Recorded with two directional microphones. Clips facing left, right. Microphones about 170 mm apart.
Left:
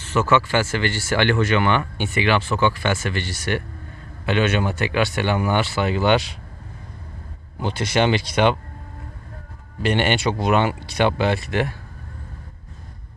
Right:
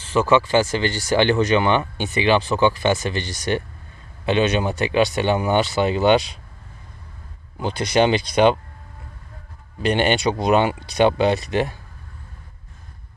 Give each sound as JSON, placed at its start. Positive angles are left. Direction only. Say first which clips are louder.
{"t": 0.1, "sound": "speech", "louder": "right 2 dB", "side_deg": -15}
{"t": 7.6, "sound": "speech", "louder": "right 2 dB", "side_deg": -15}
{"t": 9.8, "sound": "speech", "louder": "right 1 dB", "side_deg": -20}